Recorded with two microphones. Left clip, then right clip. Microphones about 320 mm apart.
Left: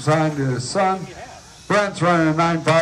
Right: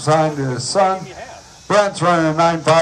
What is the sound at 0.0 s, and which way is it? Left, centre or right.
A man's voice, centre.